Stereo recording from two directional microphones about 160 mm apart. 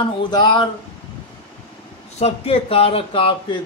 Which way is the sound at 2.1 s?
40° left (ahead or behind).